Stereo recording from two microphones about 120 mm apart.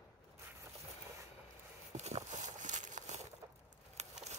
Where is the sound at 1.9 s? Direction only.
70° right (ahead or behind).